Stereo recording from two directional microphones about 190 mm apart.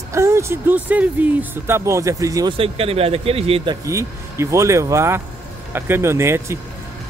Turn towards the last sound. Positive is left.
turn(degrees=-15)  # may be behind; listen again after turning